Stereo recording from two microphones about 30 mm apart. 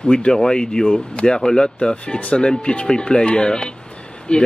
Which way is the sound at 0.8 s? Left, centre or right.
Left.